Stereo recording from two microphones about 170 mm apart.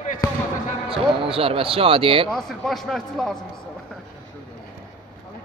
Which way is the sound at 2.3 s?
Centre (ahead or behind).